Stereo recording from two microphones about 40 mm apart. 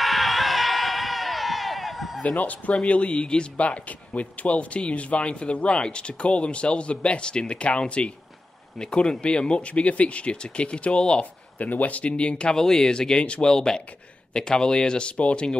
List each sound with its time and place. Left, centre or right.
0.0 s a sound: centre
2.2 s speech: left
11.5 s speech: left
12.0 s speech: left
12.5 s speech: centre